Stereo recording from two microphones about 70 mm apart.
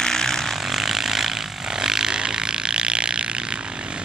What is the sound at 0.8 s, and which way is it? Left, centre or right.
Vehicle, centre.